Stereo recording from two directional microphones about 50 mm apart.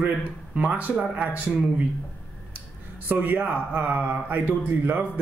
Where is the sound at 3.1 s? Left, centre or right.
Right.